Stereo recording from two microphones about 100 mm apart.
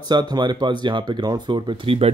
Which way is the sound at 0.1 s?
45° right (ahead or behind).